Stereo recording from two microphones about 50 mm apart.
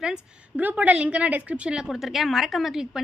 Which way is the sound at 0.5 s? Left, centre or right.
Right.